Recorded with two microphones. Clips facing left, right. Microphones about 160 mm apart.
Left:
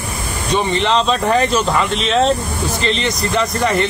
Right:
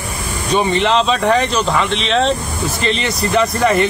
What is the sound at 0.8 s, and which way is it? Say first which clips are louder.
Speech: right 1 dB; centre (ahead or behind).